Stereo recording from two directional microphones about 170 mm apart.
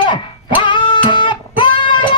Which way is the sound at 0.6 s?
30° left (ahead or behind).